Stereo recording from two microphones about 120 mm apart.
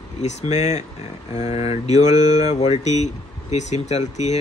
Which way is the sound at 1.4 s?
60° left (ahead or behind).